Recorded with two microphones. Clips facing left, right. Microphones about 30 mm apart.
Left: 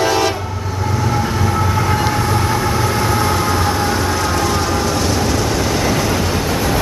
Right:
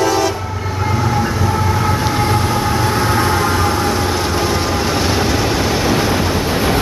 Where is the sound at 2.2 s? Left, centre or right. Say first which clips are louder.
Right 1 dB; right.